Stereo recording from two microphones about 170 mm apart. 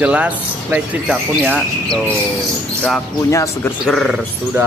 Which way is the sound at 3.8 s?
Centre (ahead or behind).